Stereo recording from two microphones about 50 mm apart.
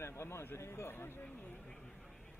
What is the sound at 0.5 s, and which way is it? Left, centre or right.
Speech, left.